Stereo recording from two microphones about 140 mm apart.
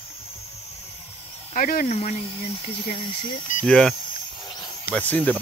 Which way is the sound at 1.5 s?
75° left (ahead or behind).